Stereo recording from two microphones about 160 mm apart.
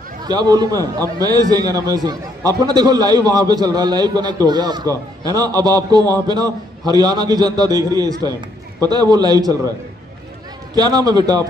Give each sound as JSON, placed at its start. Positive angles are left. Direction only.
{"t": 0.2, "sound": "a man's voice", "side_deg": -25}
{"t": 10.7, "sound": "a man's voice", "side_deg": -25}